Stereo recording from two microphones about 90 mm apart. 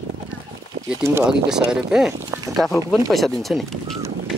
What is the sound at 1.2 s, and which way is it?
Speech, 10° right (ahead or behind).